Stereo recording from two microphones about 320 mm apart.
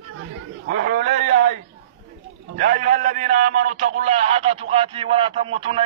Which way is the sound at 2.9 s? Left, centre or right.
Right.